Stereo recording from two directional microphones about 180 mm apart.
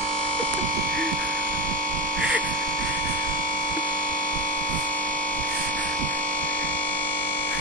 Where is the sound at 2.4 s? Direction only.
45° right (ahead or behind).